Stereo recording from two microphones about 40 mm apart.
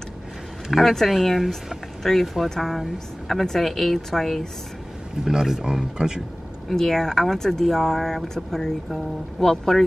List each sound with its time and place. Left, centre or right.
0.7 s a woman's voice: centre
5.2 s speech: centre
6.7 s a woman's voice: centre
8.5 s a woman's voice: centre